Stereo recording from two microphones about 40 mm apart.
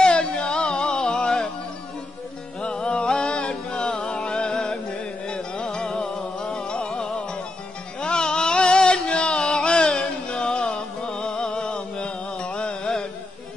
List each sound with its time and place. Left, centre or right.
0.0 s music: left
2.6 s music: left
8.0 s a sound: left